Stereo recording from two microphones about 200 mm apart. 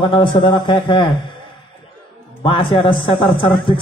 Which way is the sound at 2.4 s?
25° left (ahead or behind).